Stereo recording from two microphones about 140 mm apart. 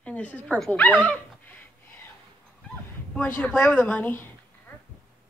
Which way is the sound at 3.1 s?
10° left (ahead or behind).